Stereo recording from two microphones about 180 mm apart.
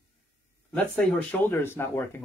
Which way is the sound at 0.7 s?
10° left (ahead or behind).